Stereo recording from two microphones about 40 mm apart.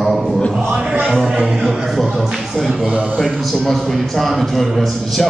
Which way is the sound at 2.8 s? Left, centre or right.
Right.